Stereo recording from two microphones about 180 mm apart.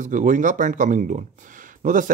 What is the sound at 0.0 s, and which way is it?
Speech, 45° right (ahead or behind).